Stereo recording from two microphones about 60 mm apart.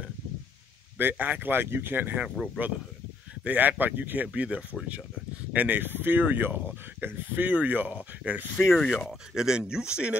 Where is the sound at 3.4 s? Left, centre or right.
Right.